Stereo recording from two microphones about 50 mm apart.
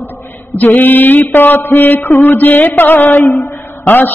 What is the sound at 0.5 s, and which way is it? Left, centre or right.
Mantra, left.